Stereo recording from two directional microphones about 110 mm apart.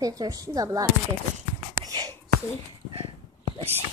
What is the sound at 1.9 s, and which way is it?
Whispering, 35° right (ahead or behind).